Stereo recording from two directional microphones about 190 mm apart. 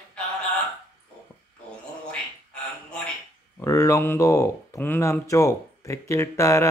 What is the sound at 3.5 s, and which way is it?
Speech, 15° left (ahead or behind).